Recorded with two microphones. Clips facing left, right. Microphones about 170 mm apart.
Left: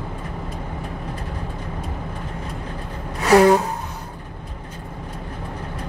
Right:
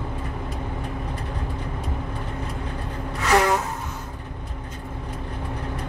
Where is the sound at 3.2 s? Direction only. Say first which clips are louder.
Left 7 dB; 35° left (ahead or behind).